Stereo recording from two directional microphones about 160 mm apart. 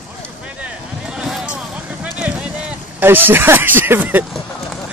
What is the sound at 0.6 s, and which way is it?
Vehicle, 5° right (ahead or behind).